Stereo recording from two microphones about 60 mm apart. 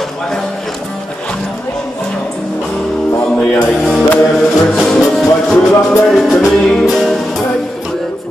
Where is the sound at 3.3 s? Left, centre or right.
Left.